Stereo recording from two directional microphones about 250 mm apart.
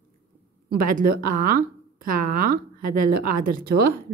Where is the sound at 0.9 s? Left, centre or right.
Right.